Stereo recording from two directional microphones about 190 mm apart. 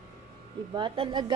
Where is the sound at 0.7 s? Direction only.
25° right (ahead or behind).